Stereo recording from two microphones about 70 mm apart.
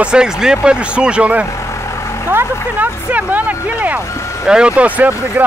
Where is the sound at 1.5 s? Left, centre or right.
Left.